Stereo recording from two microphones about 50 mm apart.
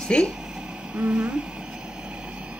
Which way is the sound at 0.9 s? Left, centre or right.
Right.